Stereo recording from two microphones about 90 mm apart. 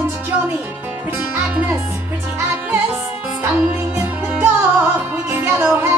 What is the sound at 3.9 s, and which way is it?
Music, 25° right (ahead or behind).